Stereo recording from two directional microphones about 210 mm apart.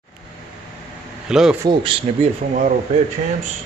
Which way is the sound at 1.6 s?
20° right (ahead or behind).